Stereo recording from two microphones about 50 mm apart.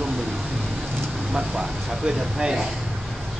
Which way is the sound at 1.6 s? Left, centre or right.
Centre.